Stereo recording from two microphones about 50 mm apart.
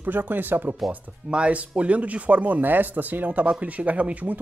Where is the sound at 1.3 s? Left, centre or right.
Right.